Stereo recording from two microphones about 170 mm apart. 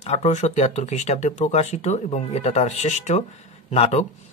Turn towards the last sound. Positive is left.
turn(degrees=40)  # may be behind; listen again after turning